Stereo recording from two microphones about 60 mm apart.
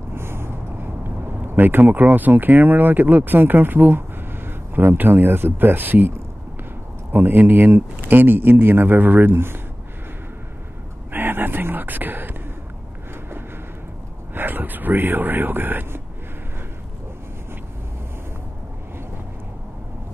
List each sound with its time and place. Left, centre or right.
0.1 s speech: right
11.1 s a sound: right
14.3 s speech: right